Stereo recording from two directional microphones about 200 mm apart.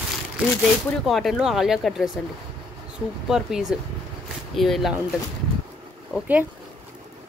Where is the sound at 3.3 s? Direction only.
Centre (ahead or behind).